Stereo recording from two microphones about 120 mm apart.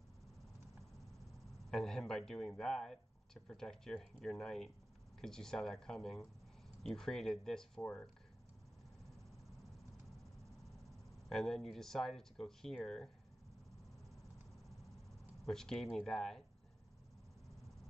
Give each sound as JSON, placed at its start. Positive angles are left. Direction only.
{"t": 1.7, "sound": "speech", "side_deg": 5}
{"t": 10.1, "sound": "cricket", "side_deg": -25}
{"t": 10.9, "sound": "speech", "side_deg": 0}
{"t": 15.4, "sound": "speech", "side_deg": 5}